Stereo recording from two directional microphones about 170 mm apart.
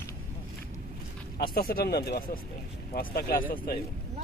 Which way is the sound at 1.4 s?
60° left (ahead or behind).